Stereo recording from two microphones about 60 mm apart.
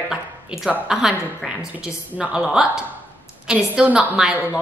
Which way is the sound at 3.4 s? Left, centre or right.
Centre.